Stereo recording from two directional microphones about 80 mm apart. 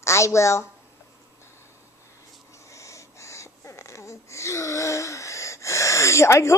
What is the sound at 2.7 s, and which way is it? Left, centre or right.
Wheeze, left.